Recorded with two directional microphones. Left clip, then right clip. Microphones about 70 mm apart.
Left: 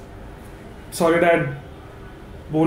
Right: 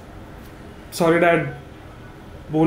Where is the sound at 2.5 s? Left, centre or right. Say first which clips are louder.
Right 1 dB; right.